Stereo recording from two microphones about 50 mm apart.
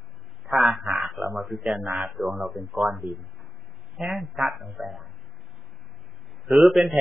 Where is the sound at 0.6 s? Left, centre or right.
Centre.